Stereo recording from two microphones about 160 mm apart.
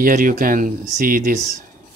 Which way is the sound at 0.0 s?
60° right (ahead or behind).